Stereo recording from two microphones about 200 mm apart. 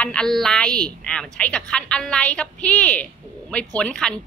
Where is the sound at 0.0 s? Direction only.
5° left (ahead or behind).